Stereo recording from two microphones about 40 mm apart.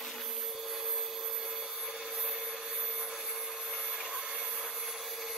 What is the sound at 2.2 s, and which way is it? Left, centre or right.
Wood, centre.